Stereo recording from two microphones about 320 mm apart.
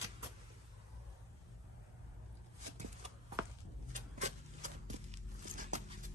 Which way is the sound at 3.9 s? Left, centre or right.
Right.